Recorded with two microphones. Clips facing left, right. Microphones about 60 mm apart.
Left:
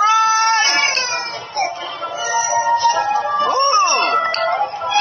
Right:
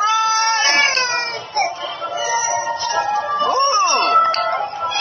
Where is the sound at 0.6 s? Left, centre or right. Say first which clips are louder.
Right 1 dB; right.